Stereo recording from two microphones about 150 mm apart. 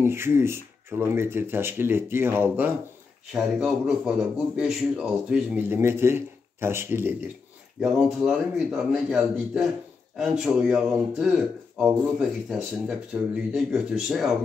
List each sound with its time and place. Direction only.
0.0 s speech: 15° right (ahead or behind)
7.8 s a man's voice: 5° right (ahead or behind)